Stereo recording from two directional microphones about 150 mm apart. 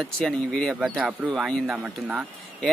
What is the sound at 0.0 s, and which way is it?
Speech, 5° left (ahead or behind).